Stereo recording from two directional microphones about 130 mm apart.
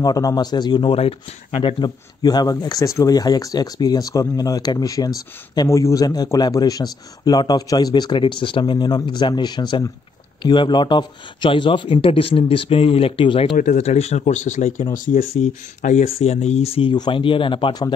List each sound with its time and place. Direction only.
0.0 s speech: 30° left (ahead or behind)
13.7 s speech: 55° left (ahead or behind); by 14.9 s 75° left (ahead or behind)
15.0 s speech: 90° left; by 16.1 s 65° left (ahead or behind)
16.1 s speech: 50° left (ahead or behind)
16.9 s speech: 35° left (ahead or behind)